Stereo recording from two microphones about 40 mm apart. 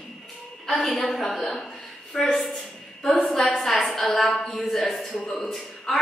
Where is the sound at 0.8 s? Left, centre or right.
Centre.